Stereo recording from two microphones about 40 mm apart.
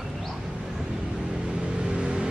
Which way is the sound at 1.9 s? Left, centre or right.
Right.